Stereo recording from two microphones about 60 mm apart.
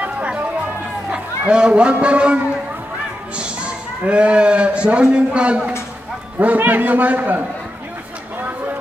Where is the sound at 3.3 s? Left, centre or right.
Centre.